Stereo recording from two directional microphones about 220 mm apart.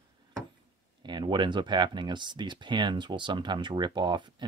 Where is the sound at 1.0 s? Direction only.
20° right (ahead or behind).